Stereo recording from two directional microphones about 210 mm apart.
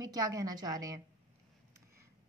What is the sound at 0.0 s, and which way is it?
A woman's voice, 15° right (ahead or behind).